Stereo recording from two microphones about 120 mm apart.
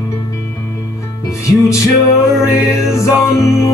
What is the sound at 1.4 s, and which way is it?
Music, 25° left (ahead or behind).